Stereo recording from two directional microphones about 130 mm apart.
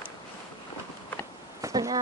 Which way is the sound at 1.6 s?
25° right (ahead or behind).